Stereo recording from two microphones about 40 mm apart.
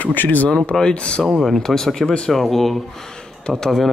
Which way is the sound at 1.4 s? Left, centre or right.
Centre.